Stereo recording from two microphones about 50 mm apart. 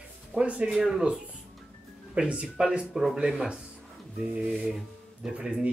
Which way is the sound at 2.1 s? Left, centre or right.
Right.